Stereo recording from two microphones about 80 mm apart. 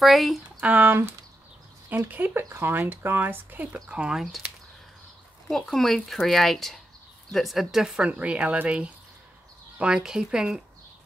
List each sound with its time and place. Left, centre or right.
0.0 s speech: centre
0.6 s speech: centre
5.5 s speech: centre